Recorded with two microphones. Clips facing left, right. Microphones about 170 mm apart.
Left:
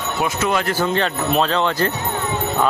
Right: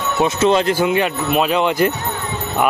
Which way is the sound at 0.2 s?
25° right (ahead or behind).